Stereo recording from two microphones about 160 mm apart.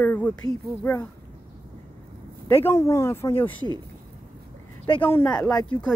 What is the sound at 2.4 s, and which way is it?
A woman's voice, 15° left (ahead or behind).